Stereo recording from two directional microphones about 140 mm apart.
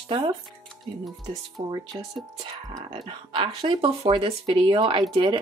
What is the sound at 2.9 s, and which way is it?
Speech, 45° right (ahead or behind).